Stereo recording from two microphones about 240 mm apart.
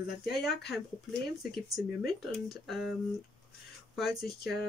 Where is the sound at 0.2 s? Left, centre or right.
Centre.